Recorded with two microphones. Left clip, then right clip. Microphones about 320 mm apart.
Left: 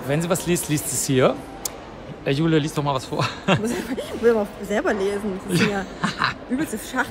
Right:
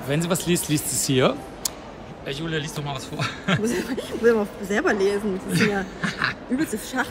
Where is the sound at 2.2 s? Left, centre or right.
Left; by 7.0 s centre.